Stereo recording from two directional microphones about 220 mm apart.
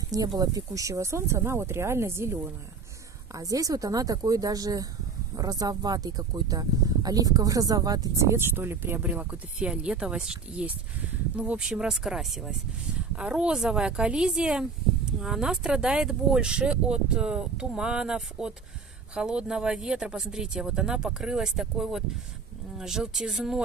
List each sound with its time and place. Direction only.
0.4 s speech: 15° right (ahead or behind)
3.3 s speech: 15° right (ahead or behind)